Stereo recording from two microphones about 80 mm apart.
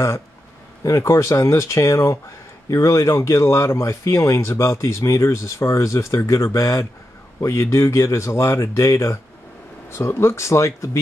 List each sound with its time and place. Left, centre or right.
0.8 s speech: left